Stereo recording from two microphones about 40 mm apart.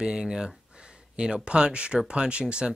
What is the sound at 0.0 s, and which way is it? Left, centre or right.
Speech, centre.